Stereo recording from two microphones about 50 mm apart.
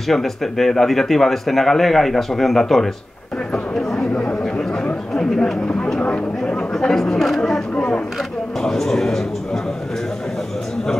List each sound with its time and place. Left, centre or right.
0.1 s speech: centre
3.9 s chatter: centre
5.1 s speech: centre
5.9 s speech: left
6.9 s speech: centre